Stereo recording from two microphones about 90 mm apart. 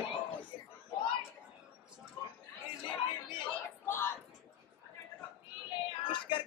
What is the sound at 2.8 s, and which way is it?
Chatter, 65° left (ahead or behind).